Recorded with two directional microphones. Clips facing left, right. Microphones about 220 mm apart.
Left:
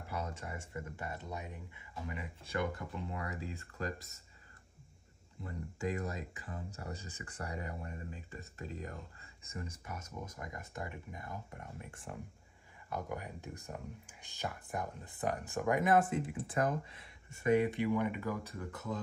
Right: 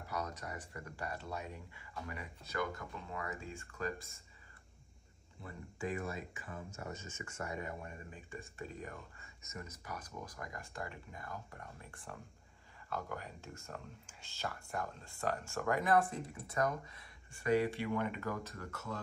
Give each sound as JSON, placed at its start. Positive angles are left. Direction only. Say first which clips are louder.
{"t": 0.1, "sound": "speech", "louder": "even", "side_deg": 25}
{"t": 5.8, "sound": "speech", "louder": "left 2 dB", "side_deg": 40}